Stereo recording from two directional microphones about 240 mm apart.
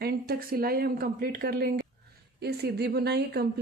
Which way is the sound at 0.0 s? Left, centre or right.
Right.